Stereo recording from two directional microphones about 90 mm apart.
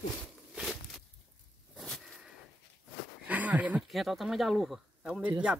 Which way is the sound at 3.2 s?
15° right (ahead or behind).